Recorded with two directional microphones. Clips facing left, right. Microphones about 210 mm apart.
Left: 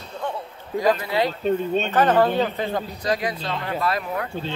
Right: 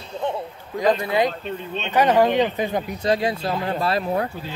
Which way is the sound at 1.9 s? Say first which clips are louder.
Right 3 dB; 10° right (ahead or behind).